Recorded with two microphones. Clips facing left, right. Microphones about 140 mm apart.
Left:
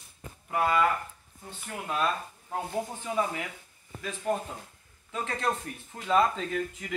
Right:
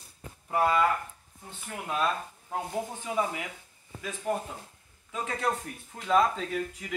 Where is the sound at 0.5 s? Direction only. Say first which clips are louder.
Right 1 dB; 20° right (ahead or behind).